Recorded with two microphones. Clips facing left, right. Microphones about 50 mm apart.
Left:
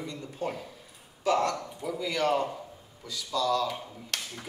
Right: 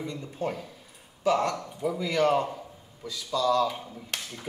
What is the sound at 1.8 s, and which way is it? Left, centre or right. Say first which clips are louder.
Speech: right 5 dB; right.